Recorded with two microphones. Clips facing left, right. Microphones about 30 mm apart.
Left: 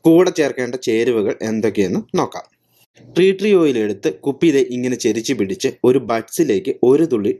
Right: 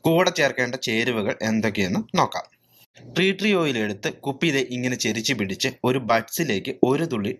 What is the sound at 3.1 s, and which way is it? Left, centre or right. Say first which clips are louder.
Speech: left 8 dB; centre.